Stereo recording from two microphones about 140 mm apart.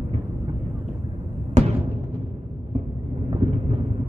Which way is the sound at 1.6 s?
55° right (ahead or behind).